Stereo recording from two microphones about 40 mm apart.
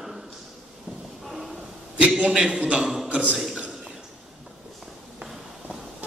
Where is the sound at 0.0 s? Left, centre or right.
Centre.